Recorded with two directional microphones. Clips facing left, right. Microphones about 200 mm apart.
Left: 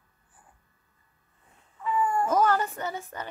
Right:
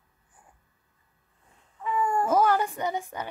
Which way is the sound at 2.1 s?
10° right (ahead or behind).